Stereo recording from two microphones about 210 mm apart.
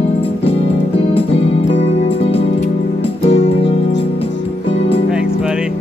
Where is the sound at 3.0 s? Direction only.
30° left (ahead or behind).